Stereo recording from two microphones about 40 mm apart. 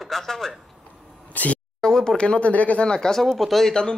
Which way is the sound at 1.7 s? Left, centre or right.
Centre.